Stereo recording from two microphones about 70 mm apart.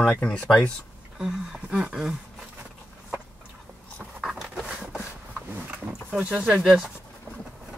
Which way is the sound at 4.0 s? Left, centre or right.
Centre.